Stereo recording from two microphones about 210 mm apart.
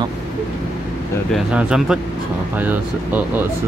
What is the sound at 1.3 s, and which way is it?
Speech, 5° right (ahead or behind).